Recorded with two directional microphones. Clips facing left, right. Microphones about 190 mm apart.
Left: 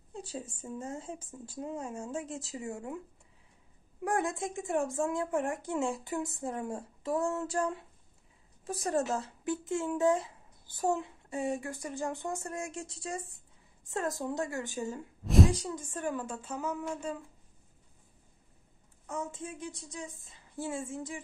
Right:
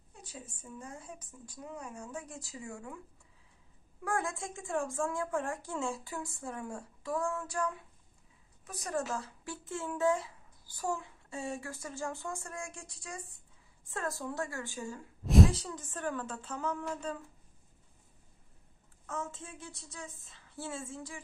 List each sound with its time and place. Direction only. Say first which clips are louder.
0.1 s speech: left 9 dB; 30° left (ahead or behind)
4.0 s speech: left 4 dB; 20° left (ahead or behind)
15.2 s a sound: even; centre (ahead or behind)
15.5 s a woman's voice: left 4 dB; 15° left (ahead or behind)
19.0 s a woman's voice: left 3 dB; 15° left (ahead or behind)